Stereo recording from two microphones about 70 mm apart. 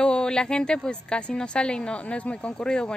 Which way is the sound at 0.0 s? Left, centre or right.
Centre.